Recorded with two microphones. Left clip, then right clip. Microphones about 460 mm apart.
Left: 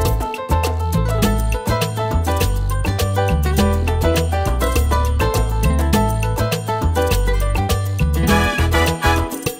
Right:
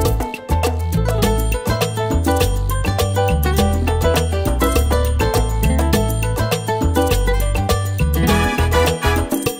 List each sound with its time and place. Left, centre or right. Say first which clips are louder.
1.2 s music: right 2 dB; right
3.0 s music: right 2 dB; right
7.1 s music: right 1 dB; right